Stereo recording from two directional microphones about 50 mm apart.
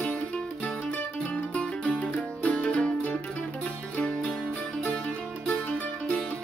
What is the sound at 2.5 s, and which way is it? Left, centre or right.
Music, left.